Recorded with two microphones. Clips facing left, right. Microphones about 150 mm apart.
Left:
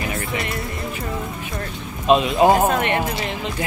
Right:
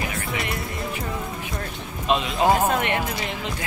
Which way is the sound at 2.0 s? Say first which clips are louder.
Left 5 dB; 20° left (ahead or behind).